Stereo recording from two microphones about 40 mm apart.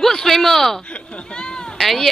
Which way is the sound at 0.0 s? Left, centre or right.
Centre.